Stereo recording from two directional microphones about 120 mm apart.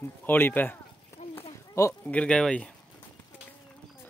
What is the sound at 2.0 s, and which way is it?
Speech, 10° left (ahead or behind).